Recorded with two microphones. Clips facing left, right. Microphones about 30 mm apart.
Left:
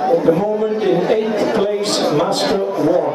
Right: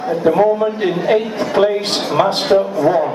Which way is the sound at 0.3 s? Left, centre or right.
Right.